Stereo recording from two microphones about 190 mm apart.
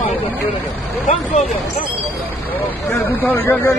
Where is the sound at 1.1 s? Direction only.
40° left (ahead or behind).